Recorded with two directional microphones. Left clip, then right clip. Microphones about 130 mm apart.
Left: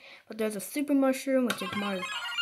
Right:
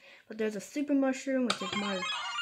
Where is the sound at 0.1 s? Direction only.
10° left (ahead or behind).